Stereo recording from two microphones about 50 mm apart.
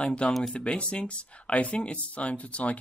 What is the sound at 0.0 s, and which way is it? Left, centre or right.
Speech, left.